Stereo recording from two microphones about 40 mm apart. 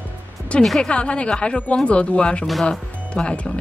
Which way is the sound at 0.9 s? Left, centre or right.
Left.